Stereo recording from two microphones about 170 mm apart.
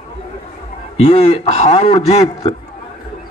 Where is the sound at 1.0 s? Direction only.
35° left (ahead or behind).